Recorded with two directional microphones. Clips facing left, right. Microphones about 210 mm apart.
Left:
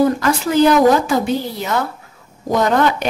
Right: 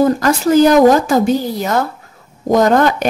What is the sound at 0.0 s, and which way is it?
Speech, 40° right (ahead or behind).